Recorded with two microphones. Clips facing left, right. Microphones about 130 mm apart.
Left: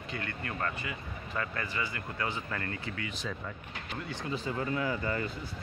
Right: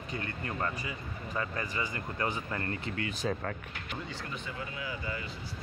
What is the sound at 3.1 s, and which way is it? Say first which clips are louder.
Speech: right 5 dB; 45° right (ahead or behind).